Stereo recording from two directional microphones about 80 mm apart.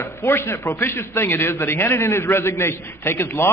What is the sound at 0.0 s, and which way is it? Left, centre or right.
A man's voice, left.